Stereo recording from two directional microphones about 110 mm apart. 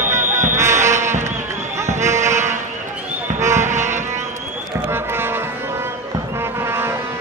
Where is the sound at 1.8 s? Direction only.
25° right (ahead or behind).